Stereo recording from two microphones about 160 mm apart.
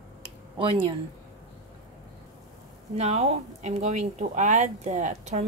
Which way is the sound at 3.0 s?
40° right (ahead or behind).